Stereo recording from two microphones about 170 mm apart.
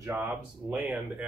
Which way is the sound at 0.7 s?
5° right (ahead or behind).